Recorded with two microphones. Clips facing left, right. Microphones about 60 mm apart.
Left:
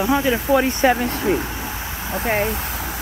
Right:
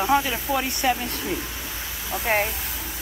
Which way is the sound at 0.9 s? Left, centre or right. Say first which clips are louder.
Left 8 dB; left.